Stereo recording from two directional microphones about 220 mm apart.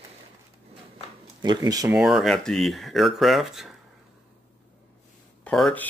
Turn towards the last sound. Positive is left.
turn(degrees=5)  # may be behind; listen again after turning